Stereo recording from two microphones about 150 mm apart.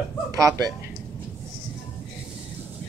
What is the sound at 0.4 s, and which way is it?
Speech, 20° right (ahead or behind).